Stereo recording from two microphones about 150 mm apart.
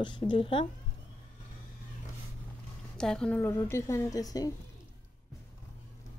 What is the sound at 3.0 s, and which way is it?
Speech, 5° left (ahead or behind).